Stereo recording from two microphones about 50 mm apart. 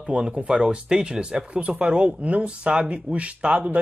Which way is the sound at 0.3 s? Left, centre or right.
Right.